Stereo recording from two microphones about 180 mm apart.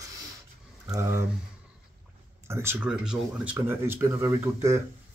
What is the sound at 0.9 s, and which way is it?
Speech, 15° right (ahead or behind).